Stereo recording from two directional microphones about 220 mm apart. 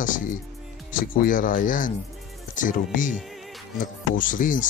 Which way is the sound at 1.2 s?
40° left (ahead or behind).